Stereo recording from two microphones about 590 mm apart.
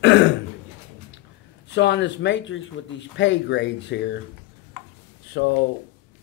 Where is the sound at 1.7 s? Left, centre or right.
Centre.